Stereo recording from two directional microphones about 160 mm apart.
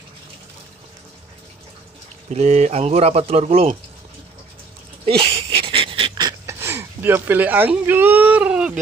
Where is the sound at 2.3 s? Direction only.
45° right (ahead or behind).